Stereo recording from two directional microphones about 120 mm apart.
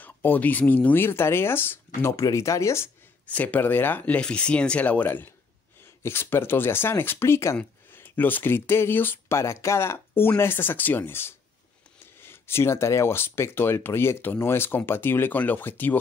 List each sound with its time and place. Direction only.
0.0 s speech: 15° left (ahead or behind)
3.3 s speech: 10° left (ahead or behind)